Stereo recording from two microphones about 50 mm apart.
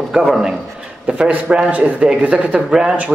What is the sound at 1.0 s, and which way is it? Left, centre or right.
Speech, right.